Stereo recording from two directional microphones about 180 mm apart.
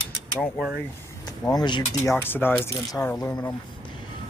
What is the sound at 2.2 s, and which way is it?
Speech, 10° left (ahead or behind).